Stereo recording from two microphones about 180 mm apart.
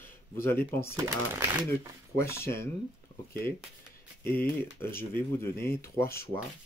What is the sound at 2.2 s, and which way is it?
Speech, 15° left (ahead or behind).